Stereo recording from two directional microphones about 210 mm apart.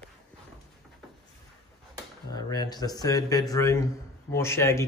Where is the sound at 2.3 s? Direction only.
20° left (ahead or behind).